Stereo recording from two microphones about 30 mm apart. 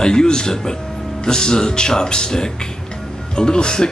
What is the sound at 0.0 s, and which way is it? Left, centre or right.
Speech, left.